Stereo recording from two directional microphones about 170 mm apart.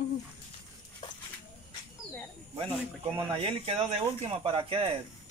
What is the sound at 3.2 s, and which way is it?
Speech, 35° right (ahead or behind).